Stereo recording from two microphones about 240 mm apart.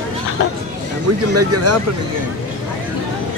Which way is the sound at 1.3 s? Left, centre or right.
Right.